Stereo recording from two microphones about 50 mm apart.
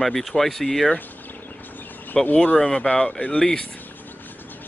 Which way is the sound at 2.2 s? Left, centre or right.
Centre.